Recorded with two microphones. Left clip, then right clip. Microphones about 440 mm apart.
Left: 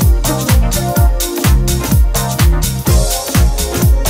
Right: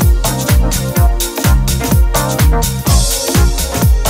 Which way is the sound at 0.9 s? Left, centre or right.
Centre.